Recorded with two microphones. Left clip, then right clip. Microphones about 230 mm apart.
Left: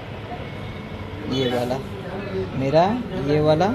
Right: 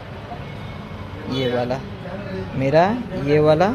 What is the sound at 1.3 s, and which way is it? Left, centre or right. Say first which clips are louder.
Speech: right 1 dB; right.